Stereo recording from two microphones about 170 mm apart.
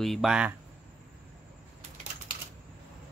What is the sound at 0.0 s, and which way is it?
Speech, centre (ahead or behind).